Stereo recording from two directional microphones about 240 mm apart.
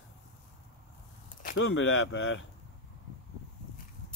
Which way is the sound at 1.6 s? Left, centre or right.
Left.